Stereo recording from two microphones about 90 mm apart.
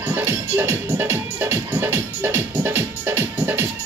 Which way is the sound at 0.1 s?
25° right (ahead or behind).